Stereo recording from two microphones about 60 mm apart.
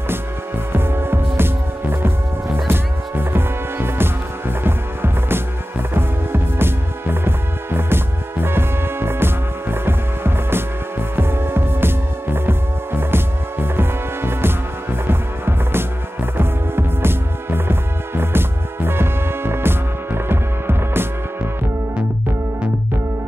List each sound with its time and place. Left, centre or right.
0.7 s music: right